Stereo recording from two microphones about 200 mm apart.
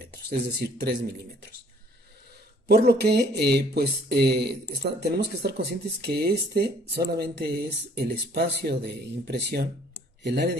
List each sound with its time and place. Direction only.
0.1 s speech: 55° right (ahead or behind)
2.7 s speech: 55° right (ahead or behind)